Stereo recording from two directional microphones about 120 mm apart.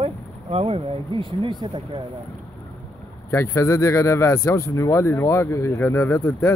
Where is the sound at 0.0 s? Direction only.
55° right (ahead or behind).